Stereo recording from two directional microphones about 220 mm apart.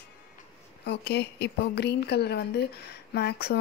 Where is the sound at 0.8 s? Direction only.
50° left (ahead or behind).